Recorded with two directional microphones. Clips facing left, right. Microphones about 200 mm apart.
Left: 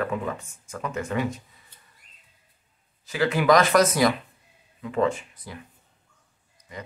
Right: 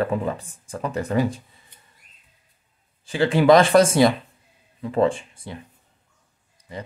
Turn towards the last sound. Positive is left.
turn(degrees=-30)  # may be behind; listen again after turning